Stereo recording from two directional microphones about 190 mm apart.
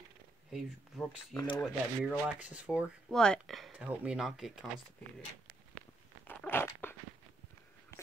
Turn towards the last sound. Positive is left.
turn(degrees=10)  # may be behind; listen again after turning